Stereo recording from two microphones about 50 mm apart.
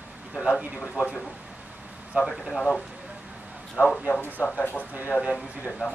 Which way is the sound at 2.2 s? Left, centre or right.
Right.